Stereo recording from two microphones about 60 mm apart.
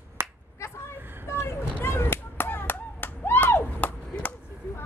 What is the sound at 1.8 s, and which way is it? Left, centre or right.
Clapping, left.